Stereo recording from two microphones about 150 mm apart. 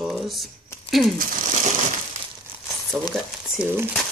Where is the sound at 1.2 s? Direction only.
65° right (ahead or behind).